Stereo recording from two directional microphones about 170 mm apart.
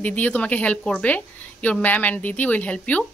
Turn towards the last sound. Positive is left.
turn(degrees=10)  # may be behind; listen again after turning